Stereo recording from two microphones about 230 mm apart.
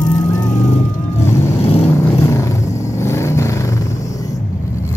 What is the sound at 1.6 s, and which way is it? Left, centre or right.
Vehicle, left.